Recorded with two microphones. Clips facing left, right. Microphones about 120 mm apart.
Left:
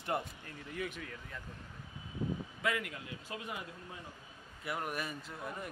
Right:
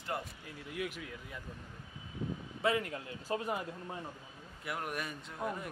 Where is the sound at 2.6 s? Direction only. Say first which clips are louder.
Right 5 dB; 35° right (ahead or behind).